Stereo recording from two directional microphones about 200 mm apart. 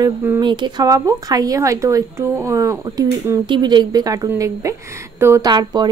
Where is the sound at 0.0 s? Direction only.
15° right (ahead or behind).